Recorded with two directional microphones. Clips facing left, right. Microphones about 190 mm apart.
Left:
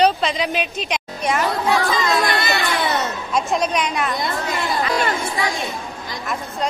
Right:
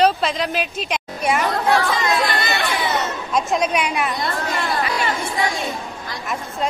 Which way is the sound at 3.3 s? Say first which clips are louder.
Right 1 dB; centre (ahead or behind).